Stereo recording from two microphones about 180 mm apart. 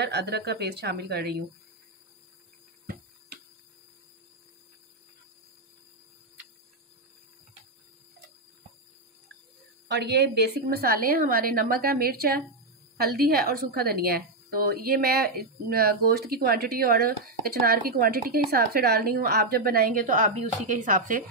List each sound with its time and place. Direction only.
0.0 s a woman's voice: 65° right (ahead or behind)
9.8 s a woman's voice: 70° right (ahead or behind); by 21.2 s 45° right (ahead or behind)